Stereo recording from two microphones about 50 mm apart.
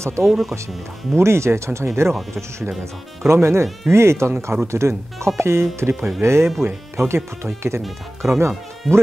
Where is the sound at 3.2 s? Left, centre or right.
Right.